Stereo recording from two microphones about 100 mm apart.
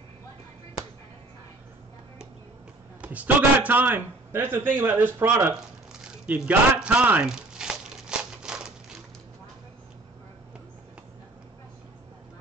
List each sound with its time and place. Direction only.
3.0 s a man's voice: 15° right (ahead or behind)
6.0 s crumpling: 15° right (ahead or behind)